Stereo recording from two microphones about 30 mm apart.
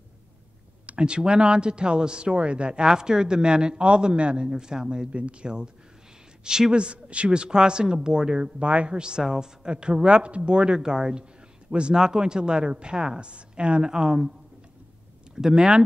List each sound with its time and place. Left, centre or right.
0.8 s speech: right
4.5 s speech: right
5.1 s speech: right
6.7 s speech: right
8.5 s speech: right
8.9 s speech: right
9.7 s speech: right
13.3 s speech: right
13.8 s speech: right
15.3 s speech: right